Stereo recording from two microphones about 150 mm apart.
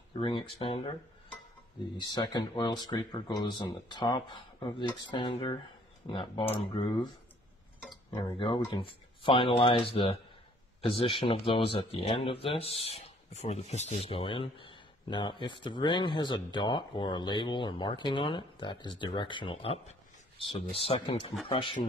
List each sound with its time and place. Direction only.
0.2 s speech: 35° left (ahead or behind)
2.0 s speech: 30° left (ahead or behind)
8.2 s speech: 35° left (ahead or behind)